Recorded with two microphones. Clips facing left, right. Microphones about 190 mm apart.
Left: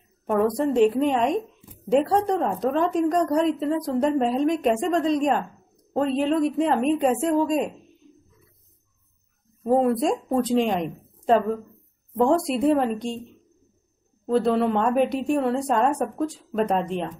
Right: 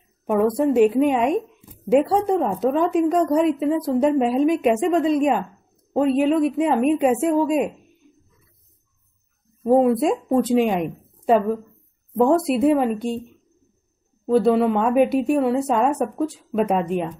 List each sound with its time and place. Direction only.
0.2 s a sound: 5° right (ahead or behind)
0.6 s a woman's voice: 5° right (ahead or behind)
9.6 s a woman's voice: 5° right (ahead or behind)
14.2 s speech: 5° right (ahead or behind)